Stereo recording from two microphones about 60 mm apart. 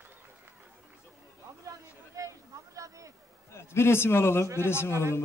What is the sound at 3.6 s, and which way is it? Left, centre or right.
A man's voice, left.